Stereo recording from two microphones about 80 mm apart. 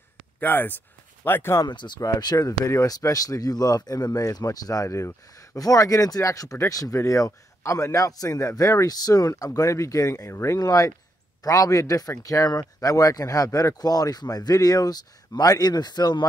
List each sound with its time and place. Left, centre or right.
0.4 s speech: left
1.7 s speech: left
2.0 s speech: left
5.6 s speech: left